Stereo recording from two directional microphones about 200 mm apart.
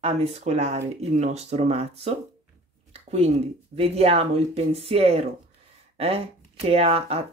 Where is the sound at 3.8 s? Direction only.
30° right (ahead or behind).